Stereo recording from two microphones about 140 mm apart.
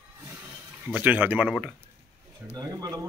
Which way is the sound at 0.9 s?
10° right (ahead or behind).